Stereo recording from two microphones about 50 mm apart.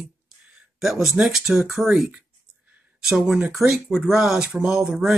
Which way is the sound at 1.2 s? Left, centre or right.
Centre.